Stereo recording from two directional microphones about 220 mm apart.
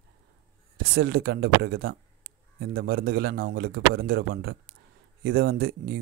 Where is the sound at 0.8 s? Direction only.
45° right (ahead or behind).